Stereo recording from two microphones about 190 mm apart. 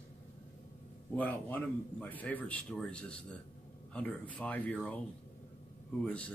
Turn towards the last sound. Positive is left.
turn(degrees=5)  # may be behind; listen again after turning